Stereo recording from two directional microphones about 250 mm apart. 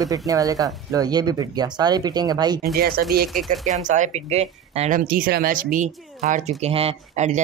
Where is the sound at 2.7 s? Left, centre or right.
Right.